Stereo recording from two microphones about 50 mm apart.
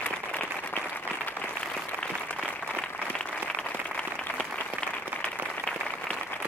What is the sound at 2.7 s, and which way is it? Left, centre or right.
Applause, left.